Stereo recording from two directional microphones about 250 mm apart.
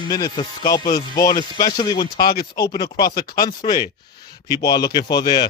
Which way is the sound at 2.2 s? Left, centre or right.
Left.